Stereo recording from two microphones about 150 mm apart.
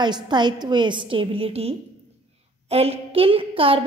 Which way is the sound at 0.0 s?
30° right (ahead or behind).